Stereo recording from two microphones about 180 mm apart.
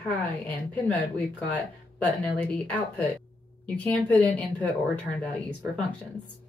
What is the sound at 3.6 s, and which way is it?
Speech, 10° left (ahead or behind).